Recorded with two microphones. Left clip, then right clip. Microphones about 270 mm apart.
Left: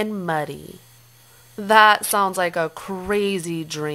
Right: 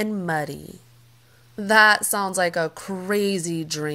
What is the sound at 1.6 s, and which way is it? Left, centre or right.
A woman's voice, centre.